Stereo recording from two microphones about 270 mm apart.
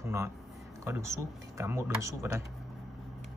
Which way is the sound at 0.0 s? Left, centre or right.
Centre.